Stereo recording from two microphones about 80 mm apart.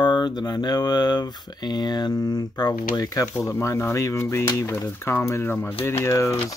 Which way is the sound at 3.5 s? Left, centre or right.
Left.